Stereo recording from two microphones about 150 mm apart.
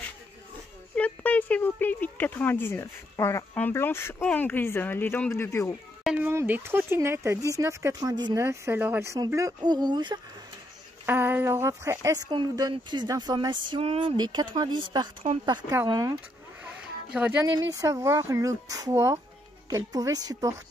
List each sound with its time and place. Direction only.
0.9 s a sound: 10° left (ahead or behind)
3.5 s speech: 15° left (ahead or behind)
6.0 s speech: 10° right (ahead or behind); by 10.2 s 30° right (ahead or behind)
11.1 s speech: 15° right (ahead or behind)
17.1 s speech: 5° right (ahead or behind)
17.6 s speech: 25° right (ahead or behind)